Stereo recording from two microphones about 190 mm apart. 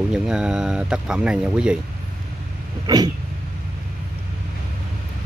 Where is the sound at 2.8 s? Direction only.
20° right (ahead or behind).